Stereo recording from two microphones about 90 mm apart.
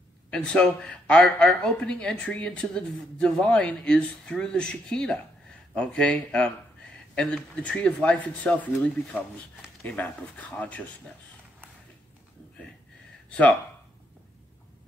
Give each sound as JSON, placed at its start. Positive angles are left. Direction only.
{"t": 0.3, "sound": "speech", "side_deg": 10}
{"t": 9.8, "sound": "speech", "side_deg": 15}
{"t": 13.3, "sound": "speech", "side_deg": 10}